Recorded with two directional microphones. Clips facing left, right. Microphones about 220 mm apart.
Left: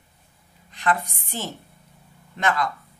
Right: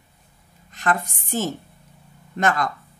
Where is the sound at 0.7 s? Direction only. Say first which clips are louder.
Right 1 dB; 45° right (ahead or behind).